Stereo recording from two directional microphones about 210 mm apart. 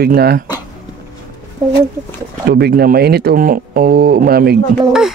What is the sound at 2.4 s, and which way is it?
Speech, 50° right (ahead or behind).